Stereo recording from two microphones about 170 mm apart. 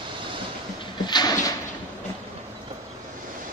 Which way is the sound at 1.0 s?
25° left (ahead or behind).